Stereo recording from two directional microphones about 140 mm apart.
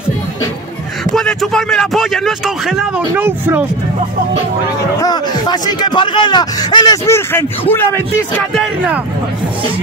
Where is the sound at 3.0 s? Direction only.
15° right (ahead or behind).